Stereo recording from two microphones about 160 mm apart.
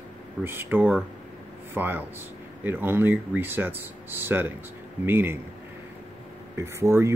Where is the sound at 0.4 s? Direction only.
15° right (ahead or behind).